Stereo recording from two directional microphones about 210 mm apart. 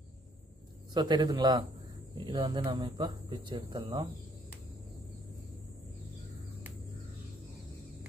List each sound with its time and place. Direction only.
0.9 s speech: 20° right (ahead or behind)